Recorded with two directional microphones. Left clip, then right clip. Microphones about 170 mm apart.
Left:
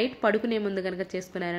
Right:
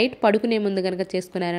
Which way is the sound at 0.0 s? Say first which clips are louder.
Right 6 dB; 40° right (ahead or behind).